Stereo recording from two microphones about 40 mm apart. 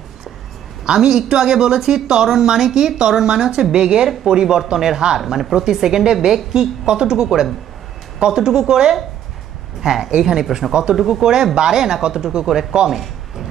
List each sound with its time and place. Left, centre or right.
0.8 s a woman's voice: centre